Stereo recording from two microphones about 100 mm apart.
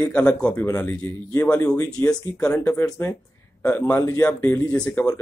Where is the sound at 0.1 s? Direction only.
10° left (ahead or behind).